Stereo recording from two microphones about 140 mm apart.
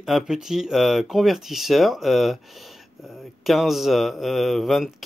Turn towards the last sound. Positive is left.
turn(degrees=0)  # may be behind; listen again after turning